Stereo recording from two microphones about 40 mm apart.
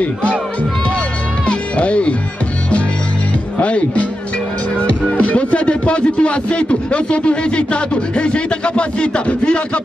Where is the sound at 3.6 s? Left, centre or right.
Left.